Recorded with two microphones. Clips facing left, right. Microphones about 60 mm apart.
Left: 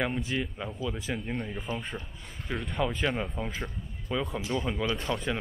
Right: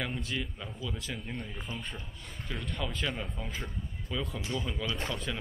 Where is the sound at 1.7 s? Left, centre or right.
Left.